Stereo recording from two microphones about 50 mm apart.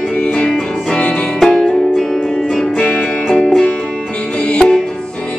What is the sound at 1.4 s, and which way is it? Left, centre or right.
Music, centre.